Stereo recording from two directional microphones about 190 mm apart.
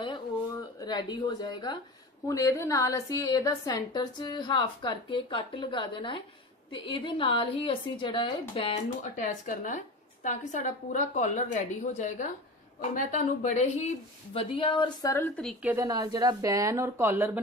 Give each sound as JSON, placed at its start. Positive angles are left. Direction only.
{"t": 0.7, "sound": "a woman's voice", "side_deg": 20}
{"t": 9.2, "sound": "a woman's voice", "side_deg": 45}
{"t": 15.1, "sound": "a woman's voice", "side_deg": 10}
{"t": 15.6, "sound": "a woman's voice", "side_deg": -15}